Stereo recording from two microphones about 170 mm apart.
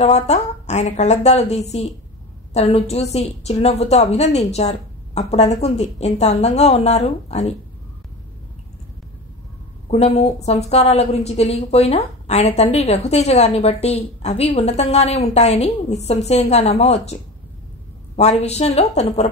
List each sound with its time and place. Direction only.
0.0 s a woman's voice: 40° left (ahead or behind)
9.8 s a woman's voice: 40° left (ahead or behind)